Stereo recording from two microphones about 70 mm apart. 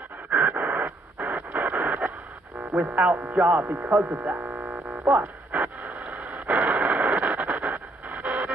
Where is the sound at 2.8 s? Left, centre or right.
Right.